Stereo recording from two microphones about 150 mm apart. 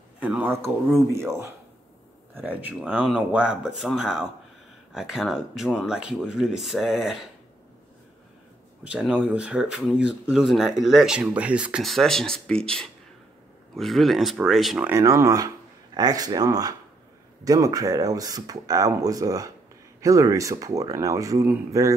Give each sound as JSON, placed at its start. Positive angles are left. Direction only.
{"t": 0.2, "sound": "speech", "side_deg": -10}
{"t": 8.8, "sound": "speech", "side_deg": -10}
{"t": 14.9, "sound": "speech", "side_deg": -20}